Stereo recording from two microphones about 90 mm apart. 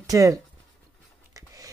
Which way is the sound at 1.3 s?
40° right (ahead or behind).